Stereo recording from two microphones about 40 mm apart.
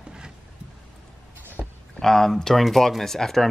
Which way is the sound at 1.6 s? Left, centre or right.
Right.